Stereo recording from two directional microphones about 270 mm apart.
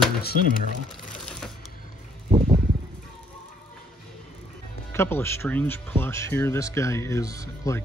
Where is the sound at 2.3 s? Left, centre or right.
Right.